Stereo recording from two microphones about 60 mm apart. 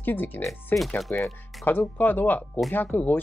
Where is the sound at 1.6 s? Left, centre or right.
Left.